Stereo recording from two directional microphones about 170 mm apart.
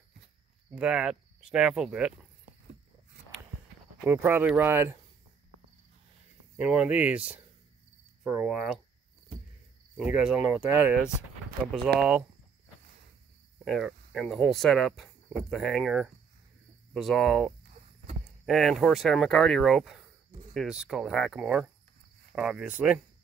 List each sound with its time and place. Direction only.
0.7 s speech: 5° right (ahead or behind)
4.0 s speech: 10° right (ahead or behind)
6.6 s speech: 5° right (ahead or behind)
9.9 s speech: 5° right (ahead or behind)
13.7 s speech: centre (ahead or behind)